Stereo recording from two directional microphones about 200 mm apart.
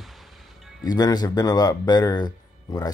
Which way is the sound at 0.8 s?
20° left (ahead or behind).